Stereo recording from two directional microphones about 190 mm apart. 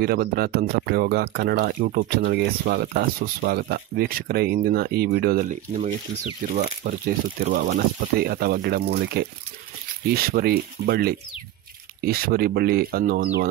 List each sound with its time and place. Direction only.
0.0 s speech: 55° right (ahead or behind)
6.5 s speech: 50° right (ahead or behind)